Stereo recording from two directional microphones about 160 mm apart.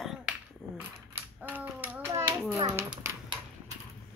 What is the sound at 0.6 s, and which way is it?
Dog, centre (ahead or behind).